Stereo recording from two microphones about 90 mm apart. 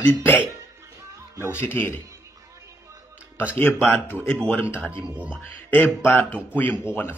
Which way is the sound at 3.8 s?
20° left (ahead or behind).